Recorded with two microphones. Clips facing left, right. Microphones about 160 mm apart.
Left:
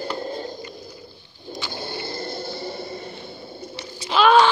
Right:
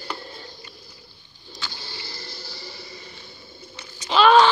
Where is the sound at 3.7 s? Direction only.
30° left (ahead or behind).